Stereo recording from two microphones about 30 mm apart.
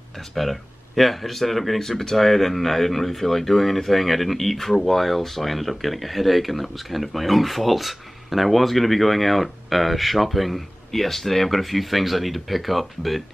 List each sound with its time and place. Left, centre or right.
0.3 s speech: centre
1.8 s speech: centre